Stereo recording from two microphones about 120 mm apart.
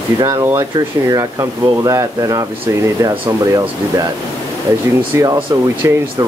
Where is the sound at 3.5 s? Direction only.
30° right (ahead or behind).